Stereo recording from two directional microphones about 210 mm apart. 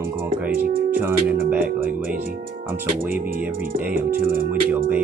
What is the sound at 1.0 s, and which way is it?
Speech, 10° right (ahead or behind).